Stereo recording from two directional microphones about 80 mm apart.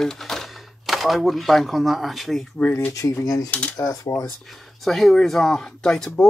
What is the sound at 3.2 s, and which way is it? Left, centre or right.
Speech, left.